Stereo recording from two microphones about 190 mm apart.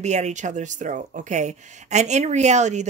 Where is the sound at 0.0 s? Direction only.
35° right (ahead or behind).